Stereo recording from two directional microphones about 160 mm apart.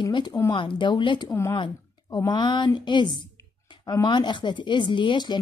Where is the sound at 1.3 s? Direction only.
15° left (ahead or behind).